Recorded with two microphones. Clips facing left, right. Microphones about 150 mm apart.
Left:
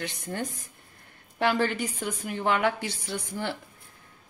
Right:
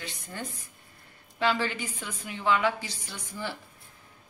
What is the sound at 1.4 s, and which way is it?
A woman's voice, 55° left (ahead or behind).